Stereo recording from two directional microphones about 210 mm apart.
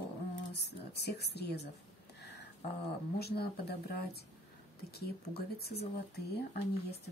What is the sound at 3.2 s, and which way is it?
A woman's voice, 50° left (ahead or behind).